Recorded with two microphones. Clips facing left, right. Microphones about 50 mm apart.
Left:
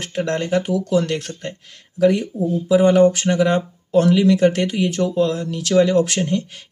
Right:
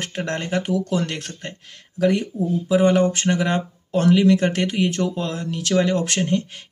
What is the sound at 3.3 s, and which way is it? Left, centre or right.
Speech, right.